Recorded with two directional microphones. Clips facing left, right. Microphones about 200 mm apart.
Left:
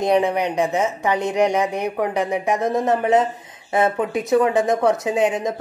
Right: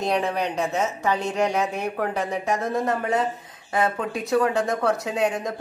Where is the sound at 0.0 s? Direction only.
15° left (ahead or behind).